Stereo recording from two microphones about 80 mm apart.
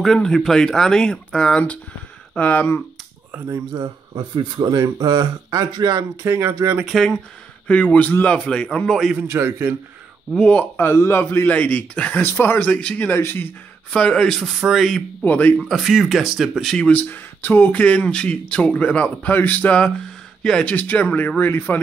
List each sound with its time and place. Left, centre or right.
0.0 s speech: centre
3.7 s speech: right
6.9 s speech: centre
7.6 s speech: centre
9.3 s a man's voice: right
10.3 s speech: centre
10.8 s a man's voice: left
11.4 s speech: centre
13.2 s speech: left
13.9 s speech: centre
15.2 s speech: centre
15.5 s speech: centre
16.9 s speech: left
20.7 s speech: left